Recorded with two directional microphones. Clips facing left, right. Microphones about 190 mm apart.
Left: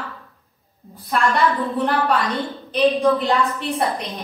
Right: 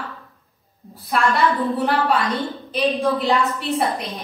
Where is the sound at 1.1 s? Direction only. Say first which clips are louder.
Even; centre (ahead or behind).